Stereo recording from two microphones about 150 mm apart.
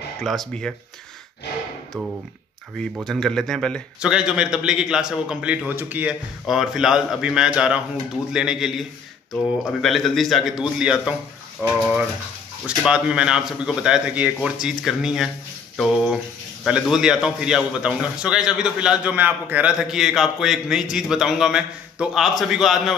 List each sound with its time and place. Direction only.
0.2 s a man's voice: 5° left (ahead or behind)
2.8 s a man's voice: 5° left (ahead or behind)
16.6 s a man's voice: 5° right (ahead or behind)